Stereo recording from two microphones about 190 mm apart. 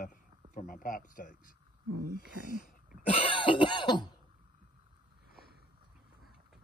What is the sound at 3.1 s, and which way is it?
Cough, 30° left (ahead or behind).